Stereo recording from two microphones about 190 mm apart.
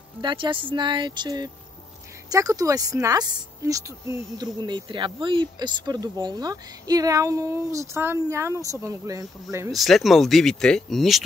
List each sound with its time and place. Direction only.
0.2 s speech: 25° right (ahead or behind)
9.7 s speech: centre (ahead or behind)